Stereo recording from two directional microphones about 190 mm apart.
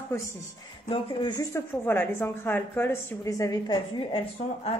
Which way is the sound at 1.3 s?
15° left (ahead or behind).